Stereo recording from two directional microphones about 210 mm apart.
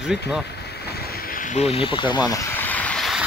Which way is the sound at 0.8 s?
50° left (ahead or behind).